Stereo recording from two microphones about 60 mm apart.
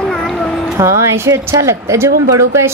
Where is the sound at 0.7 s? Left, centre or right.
Right.